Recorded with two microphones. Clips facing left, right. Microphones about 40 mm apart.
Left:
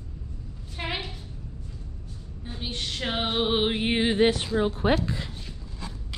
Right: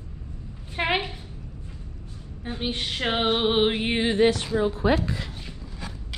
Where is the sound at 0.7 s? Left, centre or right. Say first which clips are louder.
Right 7 dB; right.